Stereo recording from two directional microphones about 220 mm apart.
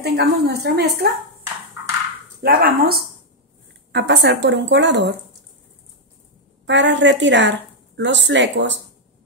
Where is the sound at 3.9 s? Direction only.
50° right (ahead or behind).